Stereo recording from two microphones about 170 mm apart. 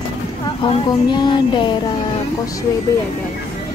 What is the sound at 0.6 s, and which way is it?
Speech, 30° left (ahead or behind).